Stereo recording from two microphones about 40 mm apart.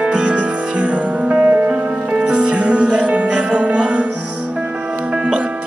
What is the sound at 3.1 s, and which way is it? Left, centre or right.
Music, right.